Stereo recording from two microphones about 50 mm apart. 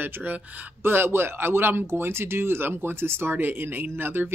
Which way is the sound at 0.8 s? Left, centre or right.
Right.